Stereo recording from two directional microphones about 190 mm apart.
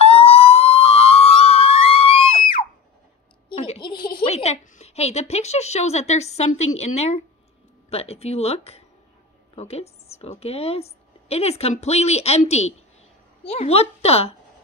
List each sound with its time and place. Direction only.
0.0 s police car: 30° left (ahead or behind)
3.4 s a sound: 30° left (ahead or behind)
7.9 s a woman's voice: 35° left (ahead or behind)